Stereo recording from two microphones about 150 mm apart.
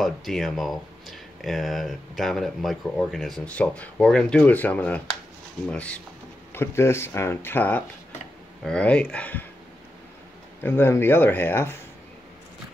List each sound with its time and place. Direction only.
0.0 s speech: centre (ahead or behind)
10.6 s speech: 15° left (ahead or behind)